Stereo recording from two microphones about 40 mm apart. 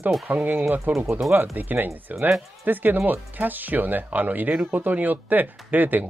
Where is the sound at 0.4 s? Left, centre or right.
Right.